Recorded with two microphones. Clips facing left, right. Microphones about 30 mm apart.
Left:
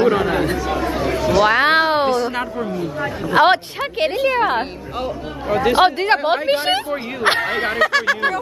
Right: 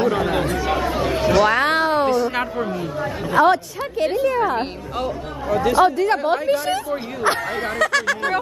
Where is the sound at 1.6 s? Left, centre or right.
Centre.